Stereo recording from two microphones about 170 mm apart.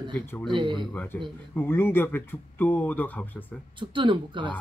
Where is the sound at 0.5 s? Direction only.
30° right (ahead or behind).